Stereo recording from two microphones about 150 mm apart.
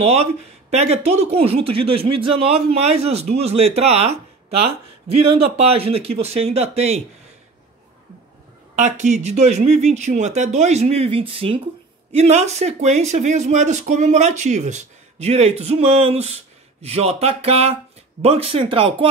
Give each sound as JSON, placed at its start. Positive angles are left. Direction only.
{"t": 0.0, "sound": "speech", "side_deg": -45}
{"t": 8.7, "sound": "speech", "side_deg": -50}